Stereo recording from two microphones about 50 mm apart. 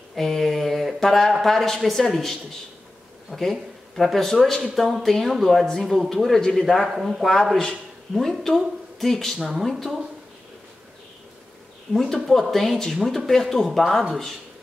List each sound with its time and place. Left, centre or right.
0.1 s a sound: centre
1.3 s speech: centre
6.9 s speech: centre
8.1 s speech: centre
11.9 s speech: centre